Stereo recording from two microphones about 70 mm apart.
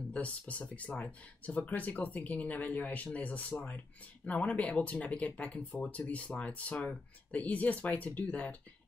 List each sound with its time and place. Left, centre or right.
0.1 s speech: centre